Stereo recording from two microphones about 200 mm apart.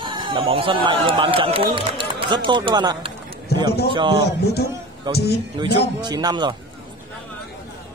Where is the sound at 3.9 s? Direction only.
25° right (ahead or behind).